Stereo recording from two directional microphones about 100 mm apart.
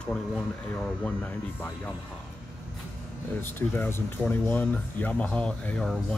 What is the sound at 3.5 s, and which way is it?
Speech, 20° left (ahead or behind).